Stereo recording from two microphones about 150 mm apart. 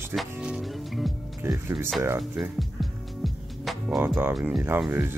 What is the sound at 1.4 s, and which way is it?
Speech, 20° right (ahead or behind).